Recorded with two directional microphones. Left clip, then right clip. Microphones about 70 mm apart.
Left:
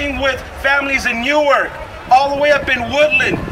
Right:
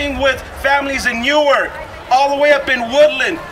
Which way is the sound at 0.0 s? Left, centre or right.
Right.